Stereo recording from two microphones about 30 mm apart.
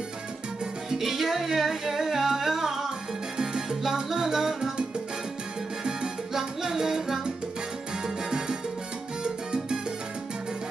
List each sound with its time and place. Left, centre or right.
0.9 s music: centre
3.8 s salsa music: centre
6.3 s music: centre
9.2 s salsa music: right